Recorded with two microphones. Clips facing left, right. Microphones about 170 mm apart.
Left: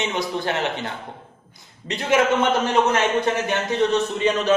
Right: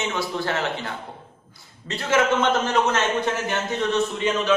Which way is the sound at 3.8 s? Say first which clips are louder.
Left 3 dB; 40° left (ahead or behind).